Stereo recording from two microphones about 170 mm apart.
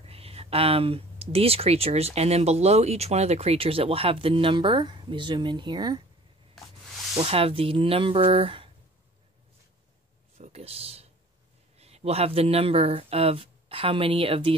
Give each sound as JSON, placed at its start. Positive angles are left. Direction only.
{"t": 0.0, "sound": "speech", "side_deg": -35}
{"t": 7.2, "sound": "speech", "side_deg": -35}
{"t": 10.3, "sound": "a sound", "side_deg": -40}
{"t": 11.8, "sound": "speech", "side_deg": -40}